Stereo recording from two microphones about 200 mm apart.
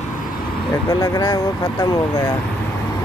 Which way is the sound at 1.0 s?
15° left (ahead or behind).